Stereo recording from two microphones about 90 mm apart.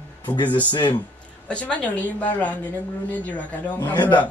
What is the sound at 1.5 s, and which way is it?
A woman's voice, 15° left (ahead or behind).